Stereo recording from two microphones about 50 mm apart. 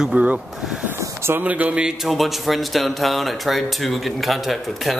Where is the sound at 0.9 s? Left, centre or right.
Right.